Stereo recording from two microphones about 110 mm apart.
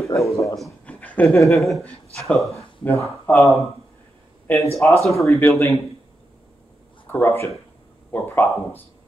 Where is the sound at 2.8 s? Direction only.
20° left (ahead or behind).